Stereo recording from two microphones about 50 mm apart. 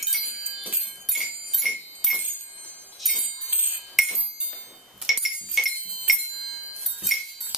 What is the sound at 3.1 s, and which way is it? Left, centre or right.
Jingle bell, right.